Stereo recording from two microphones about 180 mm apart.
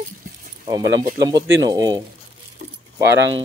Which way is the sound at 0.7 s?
20° right (ahead or behind).